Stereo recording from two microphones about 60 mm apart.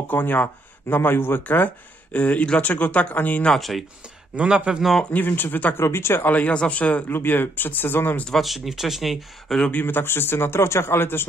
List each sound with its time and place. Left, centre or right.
0.1 s speech: left
3.5 s speech: centre
4.4 s speech: centre
5.1 s speech: left
5.8 s speech: left
6.2 s speech: left
7.1 s speech: left
8.4 s speech: centre
9.7 s speech: left